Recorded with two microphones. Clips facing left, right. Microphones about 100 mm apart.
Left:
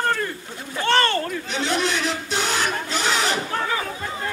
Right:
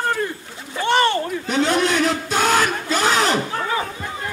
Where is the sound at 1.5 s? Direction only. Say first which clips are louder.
Right 6 dB; 45° right (ahead or behind).